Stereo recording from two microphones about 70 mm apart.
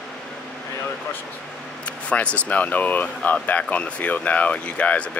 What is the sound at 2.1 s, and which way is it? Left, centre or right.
Speech, centre.